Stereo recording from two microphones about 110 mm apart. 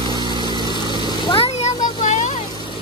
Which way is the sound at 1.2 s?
55° left (ahead or behind).